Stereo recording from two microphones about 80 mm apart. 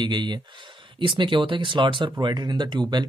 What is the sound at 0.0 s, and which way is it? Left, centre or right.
Speech, right.